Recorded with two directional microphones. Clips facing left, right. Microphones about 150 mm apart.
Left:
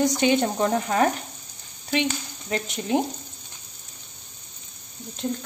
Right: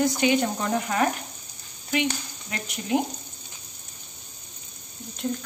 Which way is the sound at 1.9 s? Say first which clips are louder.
Left 1 dB; 30° left (ahead or behind).